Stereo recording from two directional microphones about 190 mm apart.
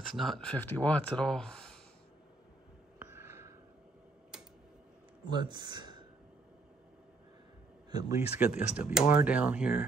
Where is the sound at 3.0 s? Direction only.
15° right (ahead or behind).